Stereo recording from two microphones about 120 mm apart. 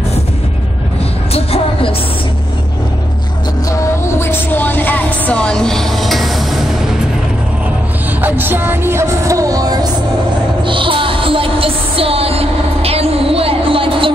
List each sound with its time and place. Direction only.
1.3 s music: 55° left (ahead or behind)
3.7 s vehicle: 20° left (ahead or behind); by 6.6 s centre (ahead or behind)
8.2 s music: 15° right (ahead or behind); by 9.8 s 30° right (ahead or behind)
10.6 s music: 45° right (ahead or behind)